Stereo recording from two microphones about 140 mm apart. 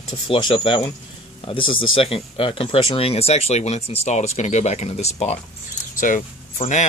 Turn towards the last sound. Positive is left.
turn(degrees=60)  # may be behind; listen again after turning